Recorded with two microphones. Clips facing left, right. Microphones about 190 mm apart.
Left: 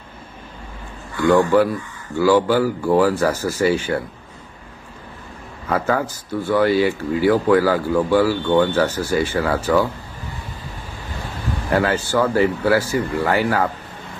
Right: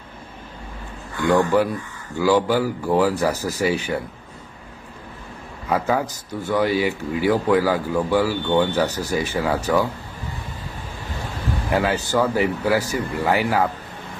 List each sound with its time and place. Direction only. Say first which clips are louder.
1.1 s speech: left 3 dB; 15° right (ahead or behind)
5.7 s speech: left 1 dB; 15° right (ahead or behind)
11.7 s speech: left 2 dB; 15° right (ahead or behind)